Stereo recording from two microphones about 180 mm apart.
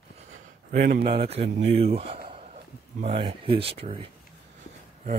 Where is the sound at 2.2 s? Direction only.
35° right (ahead or behind).